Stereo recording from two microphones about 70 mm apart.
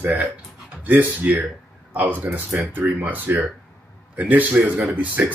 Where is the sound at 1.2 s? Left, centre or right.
Right.